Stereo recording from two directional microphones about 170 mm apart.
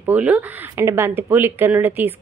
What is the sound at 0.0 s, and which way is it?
Speech, 10° right (ahead or behind).